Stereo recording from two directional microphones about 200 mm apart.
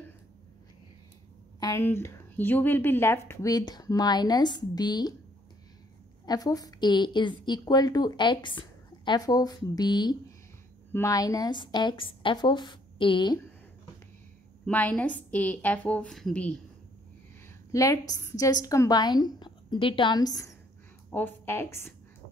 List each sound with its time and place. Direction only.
1.6 s a woman's voice: 15° left (ahead or behind)
6.2 s a woman's voice: 20° left (ahead or behind)
14.7 s a woman's voice: 5° left (ahead or behind)
17.6 s a woman's voice: 15° left (ahead or behind)